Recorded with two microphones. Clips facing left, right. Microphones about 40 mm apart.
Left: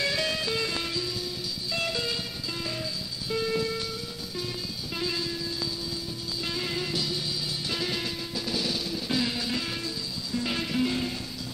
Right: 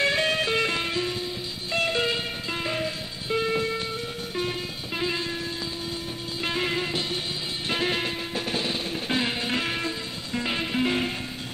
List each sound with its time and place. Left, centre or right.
0.0 s music: right
4.9 s music: right
6.4 s music: right
10.4 s music: right